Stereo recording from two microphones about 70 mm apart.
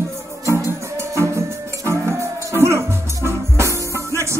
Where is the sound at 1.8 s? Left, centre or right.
Right.